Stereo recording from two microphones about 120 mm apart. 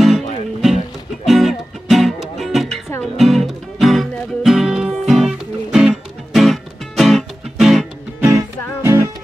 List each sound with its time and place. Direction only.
0.0 s music: centre (ahead or behind)
8.8 s music: 25° right (ahead or behind)